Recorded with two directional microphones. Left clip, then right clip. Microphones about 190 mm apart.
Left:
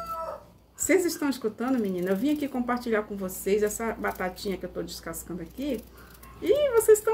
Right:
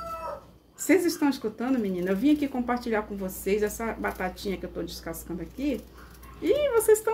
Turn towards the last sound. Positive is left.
turn(degrees=0)  # may be behind; listen again after turning